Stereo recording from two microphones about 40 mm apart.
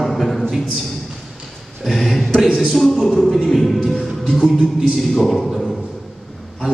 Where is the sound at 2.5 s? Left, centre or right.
Centre.